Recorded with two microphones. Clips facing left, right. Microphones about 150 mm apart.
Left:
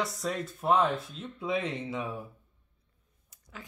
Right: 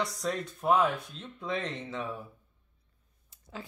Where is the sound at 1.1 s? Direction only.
5° left (ahead or behind).